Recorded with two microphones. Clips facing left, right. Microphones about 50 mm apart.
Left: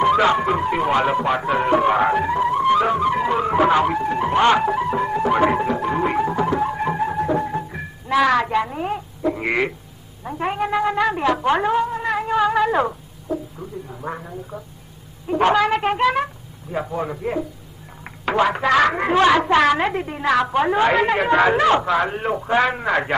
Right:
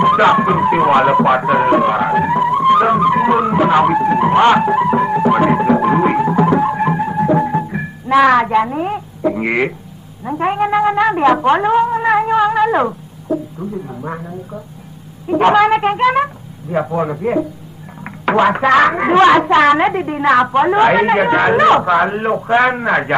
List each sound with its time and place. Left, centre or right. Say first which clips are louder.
0.0 s music: right 5 dB; right
1.9 s music: right 2 dB; centre
2.1 s music: right 5 dB; right
3.4 s music: right 3 dB; centre
3.7 s music: right 6 dB; right
4.7 s a woman's voice: right 7 dB; right
5.4 s music: right 4 dB; centre
5.7 s music: right 8 dB; right
10.2 s a woman's voice: right 7 dB; right
11.4 s a woman's voice: right 6 dB; right
12.0 s music: right 9 dB; right
12.3 s speech: right 5 dB; centre
15.2 s a woman's voice: right 6 dB; right